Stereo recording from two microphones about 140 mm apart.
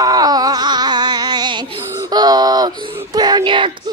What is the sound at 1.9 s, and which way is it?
Speech, 25° right (ahead or behind).